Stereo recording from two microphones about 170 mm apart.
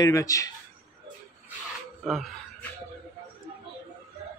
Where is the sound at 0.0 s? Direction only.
20° left (ahead or behind).